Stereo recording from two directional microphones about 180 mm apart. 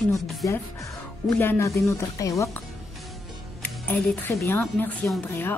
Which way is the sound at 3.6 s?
10° left (ahead or behind).